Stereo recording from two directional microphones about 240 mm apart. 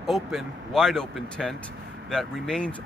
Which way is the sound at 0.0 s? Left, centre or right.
Centre.